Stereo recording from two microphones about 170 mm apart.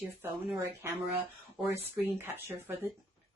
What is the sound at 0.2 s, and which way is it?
Speech, 15° right (ahead or behind).